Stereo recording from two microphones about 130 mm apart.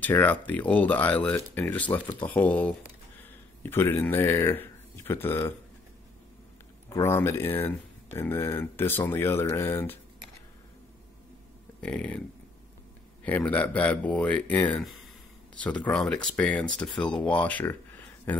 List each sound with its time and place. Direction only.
0.0 s speech: 15° left (ahead or behind)
6.9 s speech: 20° left (ahead or behind)
11.8 s speech: 10° left (ahead or behind)
13.2 s speech: 10° left (ahead or behind)